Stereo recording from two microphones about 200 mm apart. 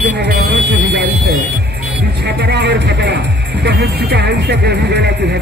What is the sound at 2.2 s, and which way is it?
Speech, 55° right (ahead or behind).